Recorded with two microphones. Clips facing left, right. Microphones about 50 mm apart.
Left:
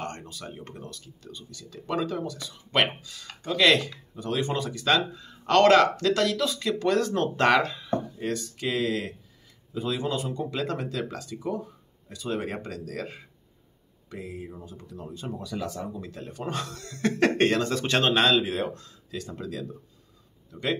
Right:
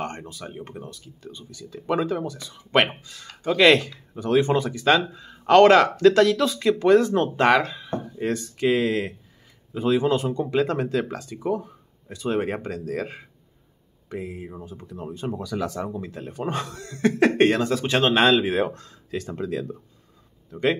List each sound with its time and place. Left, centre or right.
0.0 s a sound: right
0.6 s speech: centre; by 4.7 s right
4.7 s speech: right; by 7.8 s centre
8.2 s speech: right
14.0 s speech: right
15.3 s speech: right
16.2 s speech: centre
18.1 s speech: centre
18.4 s speech: right
18.8 s speech: right